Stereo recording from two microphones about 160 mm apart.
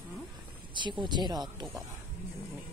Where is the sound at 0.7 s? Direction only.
30° right (ahead or behind).